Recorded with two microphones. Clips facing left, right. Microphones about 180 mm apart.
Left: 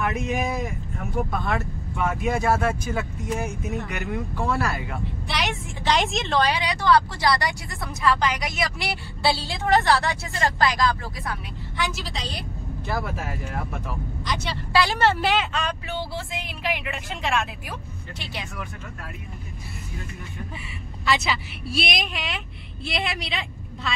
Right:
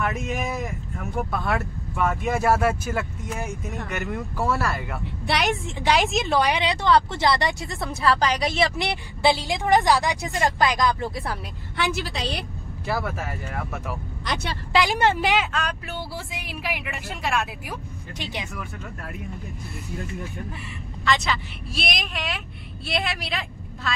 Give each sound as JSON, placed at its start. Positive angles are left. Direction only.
{"t": 1.4, "sound": "speech", "side_deg": 0}
{"t": 5.2, "sound": "a woman's voice", "side_deg": -60}
{"t": 5.9, "sound": "speech", "side_deg": -5}
{"t": 6.6, "sound": "speech", "side_deg": -25}
{"t": 11.7, "sound": "a woman's voice", "side_deg": -60}
{"t": 12.8, "sound": "speech", "side_deg": -5}
{"t": 14.2, "sound": "a woman's voice", "side_deg": -60}
{"t": 14.7, "sound": "speech", "side_deg": -15}
{"t": 21.0, "sound": "speech", "side_deg": 10}